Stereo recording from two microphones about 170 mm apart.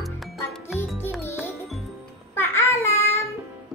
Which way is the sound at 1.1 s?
15° left (ahead or behind).